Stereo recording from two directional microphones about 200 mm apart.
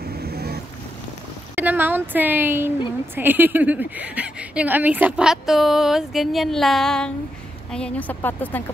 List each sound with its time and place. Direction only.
0.0 s boat: 50° right (ahead or behind)
1.5 s a woman's voice: 10° right (ahead or behind); by 8.6 s 10° left (ahead or behind)